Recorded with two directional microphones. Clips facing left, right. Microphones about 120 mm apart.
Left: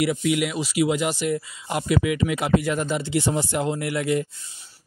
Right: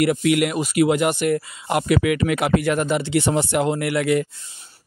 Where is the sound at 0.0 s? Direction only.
60° right (ahead or behind).